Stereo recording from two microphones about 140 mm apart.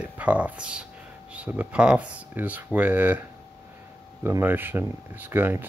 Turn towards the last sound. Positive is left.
turn(degrees=-15)  # may be behind; listen again after turning